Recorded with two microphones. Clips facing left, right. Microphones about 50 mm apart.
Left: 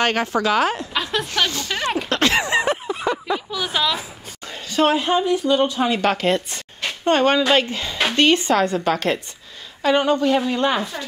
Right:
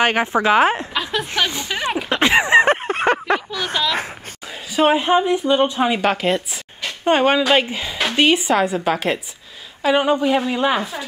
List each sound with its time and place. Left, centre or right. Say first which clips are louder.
0.0 s a woman's voice: right 3 dB; centre
2.6 s a sound: right 5 dB; right
3.5 s speech: even; centre
4.7 s a woman's voice: right 2 dB; centre